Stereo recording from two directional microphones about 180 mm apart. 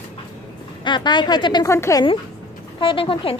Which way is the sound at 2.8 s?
30° left (ahead or behind).